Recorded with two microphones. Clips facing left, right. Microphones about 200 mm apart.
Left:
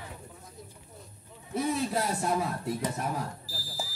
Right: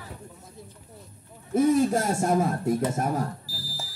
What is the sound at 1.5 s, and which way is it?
Speech, 45° right (ahead or behind).